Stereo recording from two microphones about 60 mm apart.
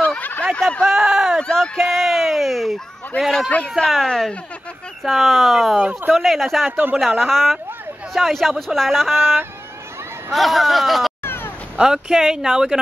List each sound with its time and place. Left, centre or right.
0.0 s snicker: left
0.8 s a sound: centre
1.5 s speech: centre
3.4 s speech: left
3.8 s speech: centre
5.8 s speech: right
6.1 s speech: centre
9.1 s a sound: right
10.3 s speech: centre
11.2 s a sound: left
11.7 s speech: centre